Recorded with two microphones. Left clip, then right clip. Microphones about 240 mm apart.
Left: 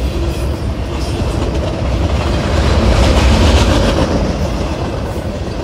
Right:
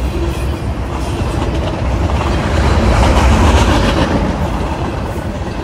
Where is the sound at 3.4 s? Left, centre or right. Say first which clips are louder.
Right 1 dB; right.